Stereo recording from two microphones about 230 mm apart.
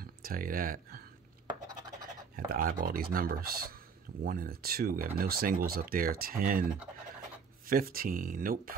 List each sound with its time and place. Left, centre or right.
0.0 s speech: right
2.3 s speech: right